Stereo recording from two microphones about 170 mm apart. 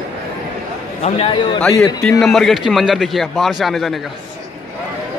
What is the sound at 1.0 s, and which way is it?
Speech, 35° left (ahead or behind).